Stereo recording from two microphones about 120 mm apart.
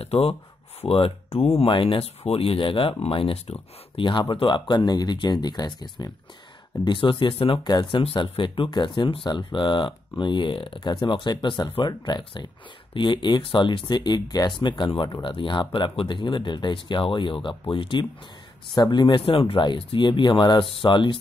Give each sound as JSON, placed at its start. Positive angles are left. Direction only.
{"t": 0.0, "sound": "speech", "side_deg": 55}
{"t": 7.6, "sound": "speech", "side_deg": 35}